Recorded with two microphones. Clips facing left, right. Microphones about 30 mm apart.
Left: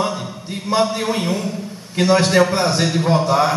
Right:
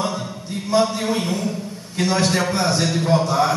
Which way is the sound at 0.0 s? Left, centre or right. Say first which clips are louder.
Left 3 dB; centre.